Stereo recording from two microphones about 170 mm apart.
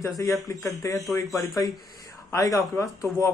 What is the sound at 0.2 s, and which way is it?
Speech, 20° left (ahead or behind).